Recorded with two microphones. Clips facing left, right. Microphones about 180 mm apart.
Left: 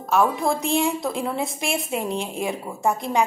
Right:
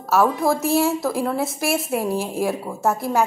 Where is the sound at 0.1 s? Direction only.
5° right (ahead or behind).